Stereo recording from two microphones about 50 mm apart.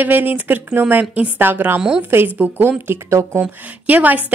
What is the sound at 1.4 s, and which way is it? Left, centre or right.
Speech, right.